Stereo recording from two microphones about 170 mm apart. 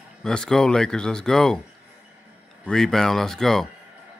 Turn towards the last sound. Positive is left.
turn(degrees=0)  # may be behind; listen again after turning